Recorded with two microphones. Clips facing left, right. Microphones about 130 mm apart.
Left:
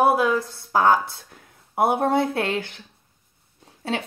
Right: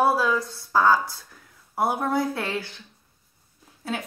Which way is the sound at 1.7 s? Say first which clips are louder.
Left 4 dB; 25° left (ahead or behind).